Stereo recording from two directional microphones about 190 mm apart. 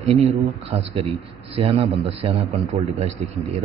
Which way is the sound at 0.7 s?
30° right (ahead or behind).